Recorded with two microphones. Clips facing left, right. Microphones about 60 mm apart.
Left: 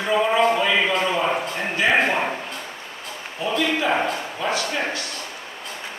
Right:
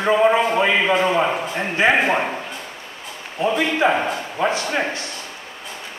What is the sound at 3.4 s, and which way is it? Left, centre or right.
Speech, right.